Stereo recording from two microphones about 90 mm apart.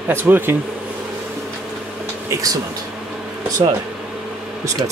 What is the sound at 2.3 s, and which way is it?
Speech, 40° right (ahead or behind).